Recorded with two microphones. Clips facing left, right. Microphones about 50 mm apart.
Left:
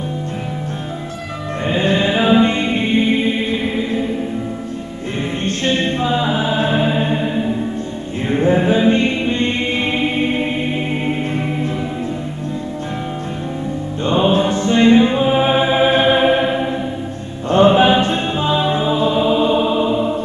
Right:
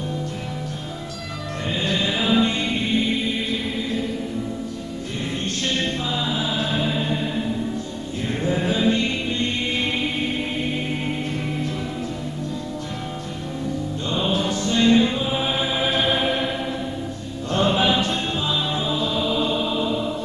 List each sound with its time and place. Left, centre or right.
1.7 s chant: left
5.4 s music: left
14.0 s music: left